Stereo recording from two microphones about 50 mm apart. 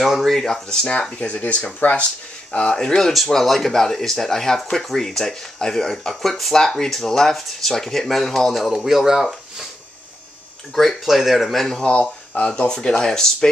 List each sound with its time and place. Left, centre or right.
0.2 s speech: centre; by 2.0 s left
2.7 s speech: centre
3.1 s speech: centre
10.7 s speech: centre
11.8 s speech: centre